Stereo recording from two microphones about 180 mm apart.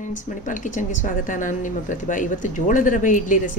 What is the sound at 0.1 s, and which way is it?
Speech, 45° left (ahead or behind).